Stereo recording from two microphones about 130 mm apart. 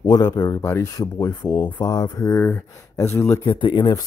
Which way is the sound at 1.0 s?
30° left (ahead or behind).